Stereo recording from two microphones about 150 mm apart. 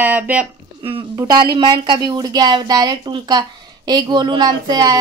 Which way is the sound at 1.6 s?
35° right (ahead or behind).